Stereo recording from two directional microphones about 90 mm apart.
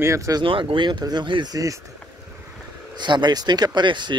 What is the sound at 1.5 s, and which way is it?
Speech, 40° right (ahead or behind).